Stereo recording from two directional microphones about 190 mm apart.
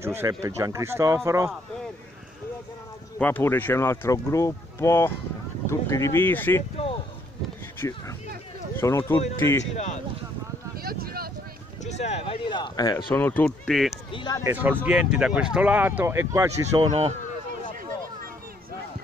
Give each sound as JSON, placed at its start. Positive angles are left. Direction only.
{"t": 0.0, "sound": "speech", "side_deg": -15}
{"t": 3.2, "sound": "speech", "side_deg": 10}
{"t": 8.7, "sound": "speech", "side_deg": 10}
{"t": 9.8, "sound": "speech", "side_deg": 40}
{"t": 10.8, "sound": "a sound", "side_deg": -50}
{"t": 11.8, "sound": "speech", "side_deg": 35}
{"t": 13.1, "sound": "speech", "side_deg": 10}
{"t": 14.1, "sound": "speech", "side_deg": 25}
{"t": 14.4, "sound": "speech", "side_deg": -10}